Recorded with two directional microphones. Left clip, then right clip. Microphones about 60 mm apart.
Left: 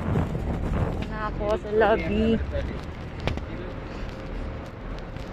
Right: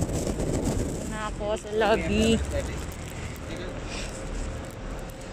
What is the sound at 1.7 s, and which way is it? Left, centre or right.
Speech, right.